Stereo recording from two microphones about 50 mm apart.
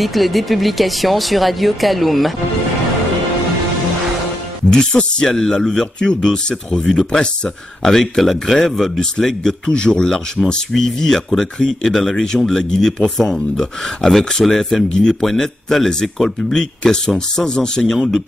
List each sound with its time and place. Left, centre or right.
0.0 s speech: centre
4.6 s speech: centre